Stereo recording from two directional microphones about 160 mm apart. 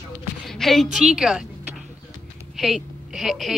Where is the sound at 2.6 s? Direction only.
Centre (ahead or behind).